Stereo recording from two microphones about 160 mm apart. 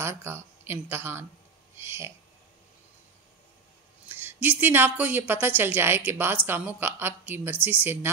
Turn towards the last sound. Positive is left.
turn(degrees=-10)  # may be behind; listen again after turning